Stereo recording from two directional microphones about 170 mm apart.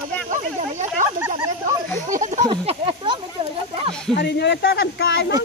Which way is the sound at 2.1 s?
45° right (ahead or behind).